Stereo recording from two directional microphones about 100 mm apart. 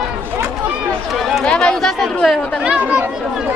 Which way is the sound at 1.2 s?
Centre (ahead or behind).